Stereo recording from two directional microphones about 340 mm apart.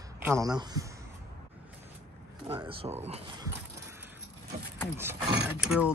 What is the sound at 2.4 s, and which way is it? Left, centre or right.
Speech, centre.